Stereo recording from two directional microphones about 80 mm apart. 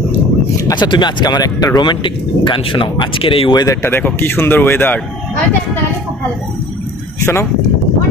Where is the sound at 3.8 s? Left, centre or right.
Left.